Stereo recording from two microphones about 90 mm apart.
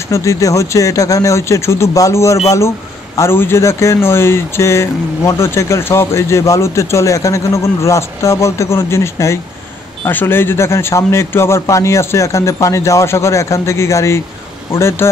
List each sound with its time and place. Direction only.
0.1 s speech: 35° left (ahead or behind)